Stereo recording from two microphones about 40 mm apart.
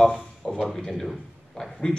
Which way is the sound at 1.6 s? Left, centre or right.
Left.